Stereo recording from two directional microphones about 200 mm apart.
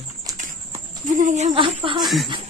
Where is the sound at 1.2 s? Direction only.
35° right (ahead or behind).